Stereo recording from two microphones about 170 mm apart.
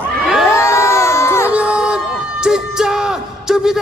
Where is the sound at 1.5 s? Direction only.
5° right (ahead or behind).